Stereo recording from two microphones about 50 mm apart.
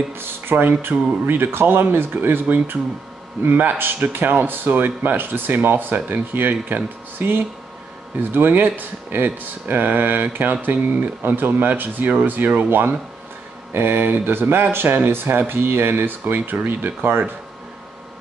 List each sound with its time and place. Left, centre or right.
0.1 s speech: right